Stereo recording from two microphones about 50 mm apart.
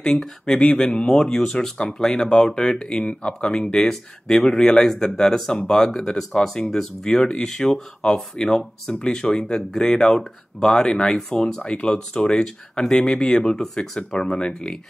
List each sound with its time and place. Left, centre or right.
0.0 s speech: centre
11.6 s speech: left